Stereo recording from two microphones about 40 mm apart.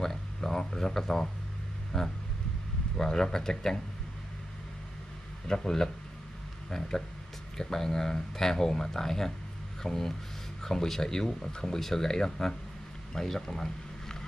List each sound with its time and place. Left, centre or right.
0.0 s speech: centre
5.5 s speech: centre
7.5 s speech: centre